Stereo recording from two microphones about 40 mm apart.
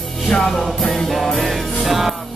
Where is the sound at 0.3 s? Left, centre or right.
Centre.